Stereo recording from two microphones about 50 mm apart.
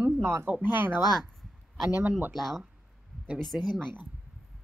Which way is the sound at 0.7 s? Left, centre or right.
Right.